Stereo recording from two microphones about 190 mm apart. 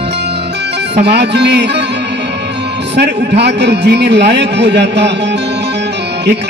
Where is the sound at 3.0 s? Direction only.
60° right (ahead or behind).